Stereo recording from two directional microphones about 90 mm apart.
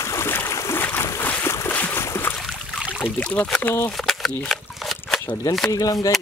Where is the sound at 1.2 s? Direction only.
25° left (ahead or behind).